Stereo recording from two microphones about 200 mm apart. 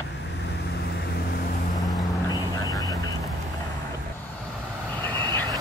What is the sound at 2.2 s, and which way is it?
Vehicle, 20° left (ahead or behind).